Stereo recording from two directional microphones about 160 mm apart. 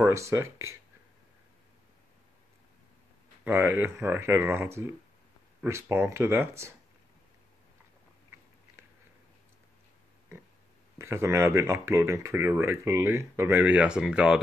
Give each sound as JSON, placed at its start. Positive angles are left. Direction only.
{"t": 0.0, "sound": "speech", "side_deg": -20}
{"t": 3.4, "sound": "speech", "side_deg": -10}
{"t": 11.0, "sound": "speech", "side_deg": -15}